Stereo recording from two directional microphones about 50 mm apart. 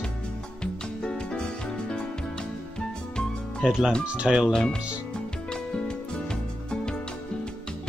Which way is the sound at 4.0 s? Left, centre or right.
Right.